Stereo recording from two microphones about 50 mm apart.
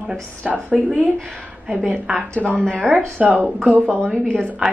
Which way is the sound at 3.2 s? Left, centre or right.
Right.